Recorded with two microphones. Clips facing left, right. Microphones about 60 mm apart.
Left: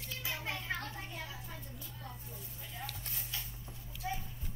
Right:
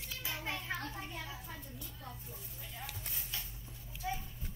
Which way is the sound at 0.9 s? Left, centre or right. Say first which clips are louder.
Even; right.